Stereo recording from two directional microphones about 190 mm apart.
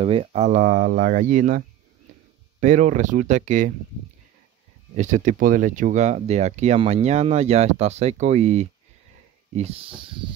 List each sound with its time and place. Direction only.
0.0 s speech: 30° right (ahead or behind)
2.6 s speech: 40° right (ahead or behind)
4.9 s speech: 40° right (ahead or behind)
9.9 s a sound: 25° right (ahead or behind)